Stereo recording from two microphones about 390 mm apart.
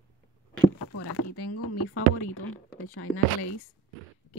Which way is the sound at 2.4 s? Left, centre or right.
Left.